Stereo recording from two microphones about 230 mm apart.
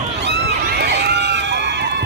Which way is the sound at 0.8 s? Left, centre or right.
Right.